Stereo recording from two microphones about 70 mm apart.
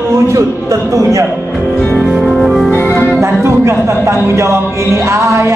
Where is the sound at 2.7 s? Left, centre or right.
Left.